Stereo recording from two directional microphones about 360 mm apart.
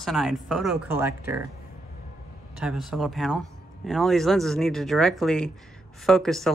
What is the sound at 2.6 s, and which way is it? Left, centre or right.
Speech, centre.